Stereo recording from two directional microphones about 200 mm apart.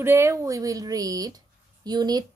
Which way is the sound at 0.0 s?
10° right (ahead or behind).